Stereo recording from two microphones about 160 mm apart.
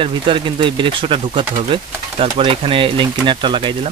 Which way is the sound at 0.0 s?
30° right (ahead or behind).